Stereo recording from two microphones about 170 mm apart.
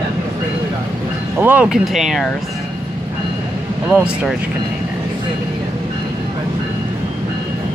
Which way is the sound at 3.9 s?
5° right (ahead or behind).